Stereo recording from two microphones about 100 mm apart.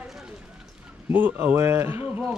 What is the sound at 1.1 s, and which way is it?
Speech, 20° right (ahead or behind).